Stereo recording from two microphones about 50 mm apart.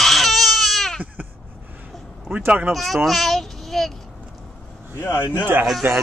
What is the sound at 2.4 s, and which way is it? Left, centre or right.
Speech, right.